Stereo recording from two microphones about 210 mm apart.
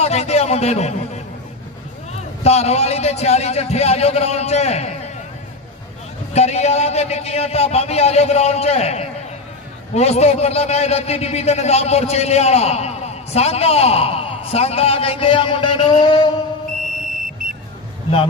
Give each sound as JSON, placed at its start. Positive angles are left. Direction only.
{"t": 0.0, "sound": "a sound", "side_deg": 30}
{"t": 2.4, "sound": "a man's voice", "side_deg": 30}
{"t": 6.3, "sound": "a man's voice", "side_deg": 30}